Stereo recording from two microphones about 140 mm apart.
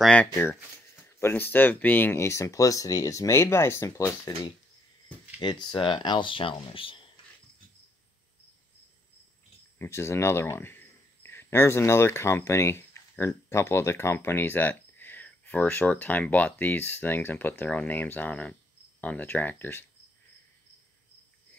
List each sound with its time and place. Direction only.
0.0 s speech: 10° left (ahead or behind)
5.0 s speech: 30° left (ahead or behind)
9.8 s speech: 20° left (ahead or behind)